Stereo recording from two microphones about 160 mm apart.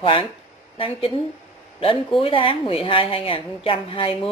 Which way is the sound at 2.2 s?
35° left (ahead or behind).